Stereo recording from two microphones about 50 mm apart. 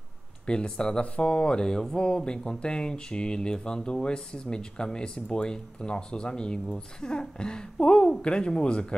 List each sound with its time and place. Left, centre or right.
0.5 s speech: centre